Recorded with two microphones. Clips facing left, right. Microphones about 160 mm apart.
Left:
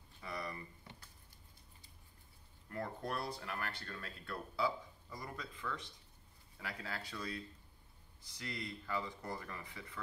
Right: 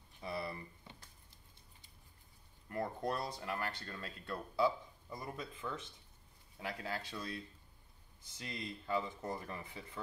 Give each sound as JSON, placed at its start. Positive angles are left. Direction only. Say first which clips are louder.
{"t": 0.2, "sound": "a sound", "louder": "right 3 dB", "side_deg": -30}
{"t": 2.7, "sound": "speech", "louder": "right 3 dB", "side_deg": -20}
{"t": 8.3, "sound": "speech", "louder": "even", "side_deg": -25}